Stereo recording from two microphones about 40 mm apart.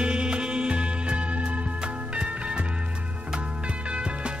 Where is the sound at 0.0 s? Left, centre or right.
Right.